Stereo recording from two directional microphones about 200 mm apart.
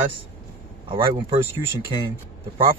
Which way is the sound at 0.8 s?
25° right (ahead or behind).